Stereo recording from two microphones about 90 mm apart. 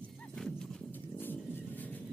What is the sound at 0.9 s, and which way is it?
Pigeon, 20° left (ahead or behind).